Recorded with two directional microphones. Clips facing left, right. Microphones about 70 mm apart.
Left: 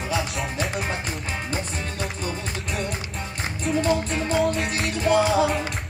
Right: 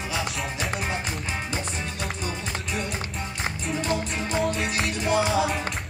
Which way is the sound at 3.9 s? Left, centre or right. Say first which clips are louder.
Left 4 dB; left.